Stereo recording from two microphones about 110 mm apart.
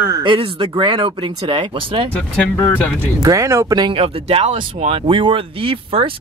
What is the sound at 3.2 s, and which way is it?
Speech, 30° right (ahead or behind).